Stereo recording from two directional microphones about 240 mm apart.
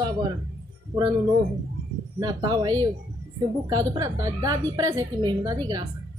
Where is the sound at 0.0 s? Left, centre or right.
Centre.